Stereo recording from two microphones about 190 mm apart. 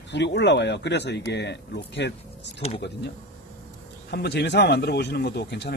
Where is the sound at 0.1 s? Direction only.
65° left (ahead or behind).